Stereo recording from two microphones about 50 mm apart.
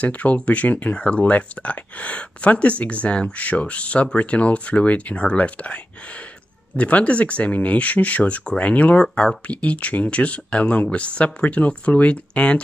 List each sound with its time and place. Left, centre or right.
0.0 s speech: left
6.8 s speech: left